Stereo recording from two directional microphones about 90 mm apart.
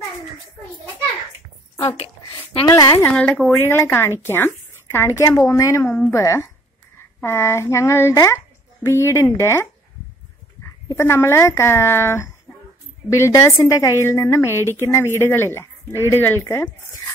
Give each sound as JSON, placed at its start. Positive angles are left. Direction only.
{"t": 2.6, "sound": "a woman's voice", "side_deg": 50}
{"t": 3.1, "sound": "a woman's voice", "side_deg": 15}
{"t": 3.6, "sound": "a woman's voice", "side_deg": 30}
{"t": 11.0, "sound": "a woman's voice", "side_deg": 30}
{"t": 13.7, "sound": "a woman's voice", "side_deg": 45}